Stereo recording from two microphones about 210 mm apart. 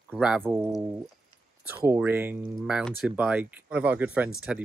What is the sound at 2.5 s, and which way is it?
Speech, centre (ahead or behind).